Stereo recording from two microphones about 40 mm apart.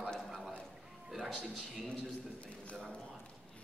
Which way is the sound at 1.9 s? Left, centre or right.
Left.